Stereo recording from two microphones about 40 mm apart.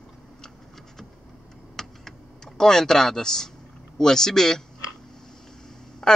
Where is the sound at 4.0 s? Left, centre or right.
Centre.